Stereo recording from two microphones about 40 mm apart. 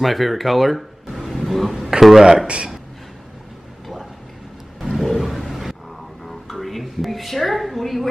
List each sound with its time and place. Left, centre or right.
0.0 s speech: centre
2.4 s speech: right
3.8 s a sound: centre